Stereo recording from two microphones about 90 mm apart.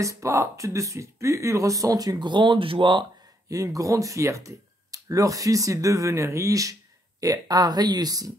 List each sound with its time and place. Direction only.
0.0 s speech: 35° right (ahead or behind); by 3.1 s 65° right (ahead or behind)
3.4 s speech: 40° right (ahead or behind)